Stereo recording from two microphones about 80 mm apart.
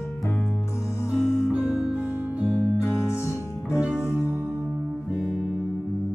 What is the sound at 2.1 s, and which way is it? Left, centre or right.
Music, centre.